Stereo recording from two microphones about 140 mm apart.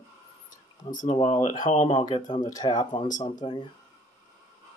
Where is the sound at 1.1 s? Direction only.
40° left (ahead or behind).